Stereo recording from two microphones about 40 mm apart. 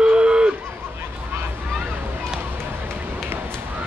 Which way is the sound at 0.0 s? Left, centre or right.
Right.